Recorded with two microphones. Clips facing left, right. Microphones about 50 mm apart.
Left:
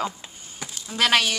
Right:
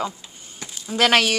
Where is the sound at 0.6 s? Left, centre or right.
Centre.